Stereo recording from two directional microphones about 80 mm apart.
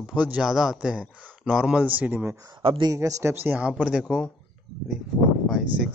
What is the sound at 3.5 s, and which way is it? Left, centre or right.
Speech, centre.